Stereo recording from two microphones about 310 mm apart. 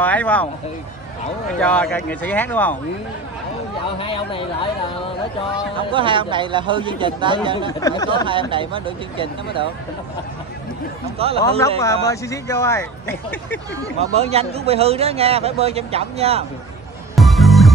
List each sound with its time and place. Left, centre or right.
0.0 s speech: centre
1.6 s speech: centre
4.0 s speech: centre
5.9 s speech: centre
7.8 s speech: centre
8.3 s speech: centre
11.2 s speech: centre
11.8 s speech: centre
13.7 s speech: centre
17.1 s music: centre